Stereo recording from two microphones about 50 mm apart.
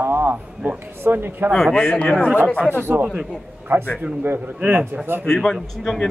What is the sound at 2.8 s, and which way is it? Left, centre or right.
A man's voice, right.